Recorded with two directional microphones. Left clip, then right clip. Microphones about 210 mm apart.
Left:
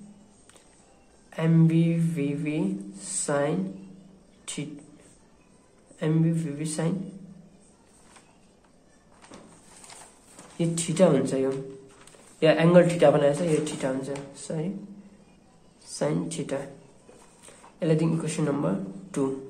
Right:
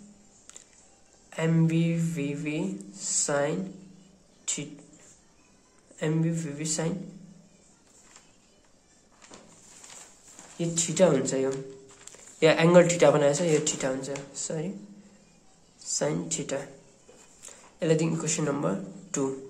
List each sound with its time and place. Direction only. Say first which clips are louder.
1.3 s speech: left 2 dB; 10° right (ahead or behind)
4.5 s a sound: right 2 dB; 5° right (ahead or behind)
5.9 s speech: left 2 dB; 10° right (ahead or behind)
10.6 s a woman's voice: left 1 dB; 10° right (ahead or behind)
15.8 s speech: left 1 dB; 10° right (ahead or behind)
17.7 s speech: even; 15° right (ahead or behind)